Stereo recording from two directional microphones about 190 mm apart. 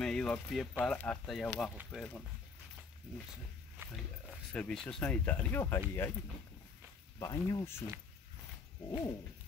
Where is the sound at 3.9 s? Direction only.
5° left (ahead or behind).